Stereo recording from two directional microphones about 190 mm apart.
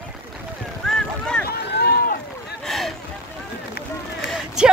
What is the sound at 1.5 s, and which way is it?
Boat, 60° left (ahead or behind).